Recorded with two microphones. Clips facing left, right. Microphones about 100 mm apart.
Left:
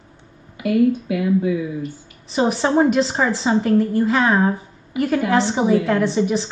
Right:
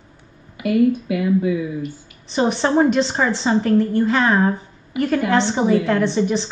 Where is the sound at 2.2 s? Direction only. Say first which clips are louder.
Even; 5° left (ahead or behind).